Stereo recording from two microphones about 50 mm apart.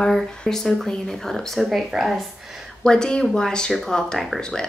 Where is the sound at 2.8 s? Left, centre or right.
Centre.